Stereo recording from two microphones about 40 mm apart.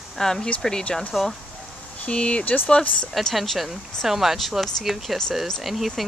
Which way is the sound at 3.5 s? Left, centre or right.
Centre.